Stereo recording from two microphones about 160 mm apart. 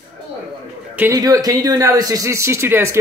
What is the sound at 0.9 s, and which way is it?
Speech, 15° right (ahead or behind).